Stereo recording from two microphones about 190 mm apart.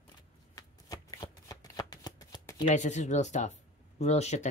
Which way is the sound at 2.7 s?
40° left (ahead or behind).